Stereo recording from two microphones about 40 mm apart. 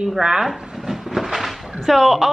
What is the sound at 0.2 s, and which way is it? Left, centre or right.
A woman's voice, centre.